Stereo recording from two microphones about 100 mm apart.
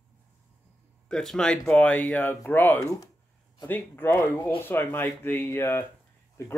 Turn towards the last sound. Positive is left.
turn(degrees=25)  # may be behind; listen again after turning